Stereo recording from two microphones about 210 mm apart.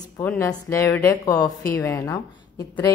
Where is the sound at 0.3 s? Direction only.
10° left (ahead or behind).